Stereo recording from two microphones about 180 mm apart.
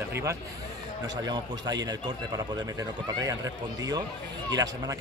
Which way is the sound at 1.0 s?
20° right (ahead or behind).